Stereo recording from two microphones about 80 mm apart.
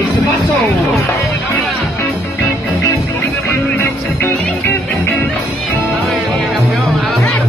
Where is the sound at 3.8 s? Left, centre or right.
Left.